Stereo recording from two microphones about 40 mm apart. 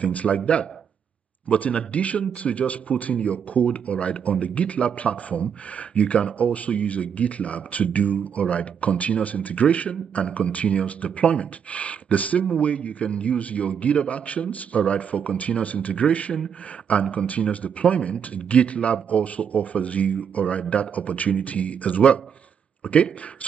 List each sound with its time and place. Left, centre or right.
0.0 s speech: left
1.5 s speech: left